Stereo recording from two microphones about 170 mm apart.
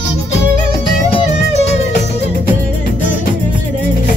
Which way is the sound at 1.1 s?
40° left (ahead or behind).